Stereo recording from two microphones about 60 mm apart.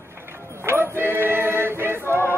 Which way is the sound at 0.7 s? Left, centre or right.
Right.